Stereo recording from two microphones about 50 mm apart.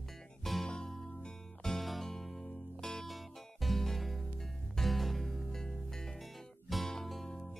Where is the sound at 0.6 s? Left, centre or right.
Centre.